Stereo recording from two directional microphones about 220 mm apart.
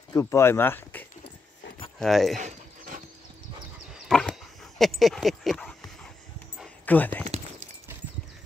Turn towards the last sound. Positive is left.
turn(degrees=5)  # may be behind; listen again after turning